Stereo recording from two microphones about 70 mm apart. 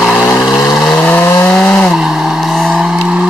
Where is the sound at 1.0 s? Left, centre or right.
Left.